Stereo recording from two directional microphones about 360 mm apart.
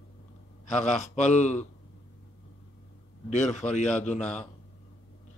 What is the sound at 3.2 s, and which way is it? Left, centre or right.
Speech, centre.